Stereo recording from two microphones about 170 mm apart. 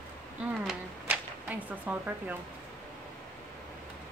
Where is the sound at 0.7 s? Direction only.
5° right (ahead or behind).